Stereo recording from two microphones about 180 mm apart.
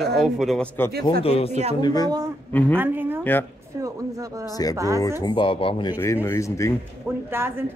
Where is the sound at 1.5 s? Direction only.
40° right (ahead or behind).